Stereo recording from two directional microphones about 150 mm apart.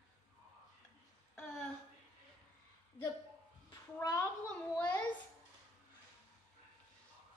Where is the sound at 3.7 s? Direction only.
25° left (ahead or behind).